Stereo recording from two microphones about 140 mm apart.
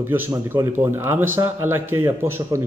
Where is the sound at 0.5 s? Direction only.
15° right (ahead or behind).